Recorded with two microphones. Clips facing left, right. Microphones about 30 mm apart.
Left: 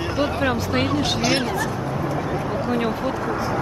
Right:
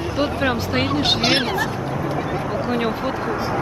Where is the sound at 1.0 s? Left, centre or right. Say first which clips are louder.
Right 3 dB; right.